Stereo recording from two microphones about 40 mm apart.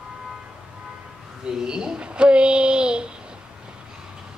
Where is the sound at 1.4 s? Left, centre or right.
Centre.